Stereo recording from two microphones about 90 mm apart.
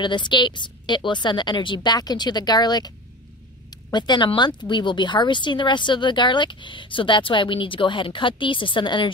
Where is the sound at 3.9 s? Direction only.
55° left (ahead or behind).